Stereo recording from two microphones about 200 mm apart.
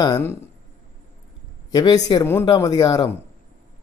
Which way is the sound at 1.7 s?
20° left (ahead or behind).